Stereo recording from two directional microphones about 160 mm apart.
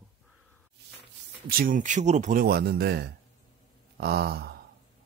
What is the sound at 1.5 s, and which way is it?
Speech, 60° right (ahead or behind).